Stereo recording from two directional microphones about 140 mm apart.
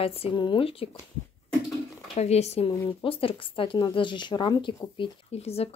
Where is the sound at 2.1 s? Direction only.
50° left (ahead or behind).